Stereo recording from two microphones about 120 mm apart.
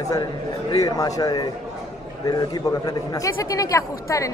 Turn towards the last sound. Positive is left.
turn(degrees=25)  # may be behind; listen again after turning